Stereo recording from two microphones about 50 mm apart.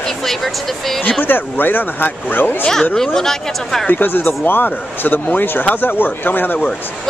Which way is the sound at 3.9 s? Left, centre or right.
Left.